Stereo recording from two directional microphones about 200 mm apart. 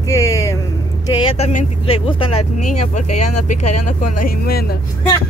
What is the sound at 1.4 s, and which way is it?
Speech, 35° left (ahead or behind).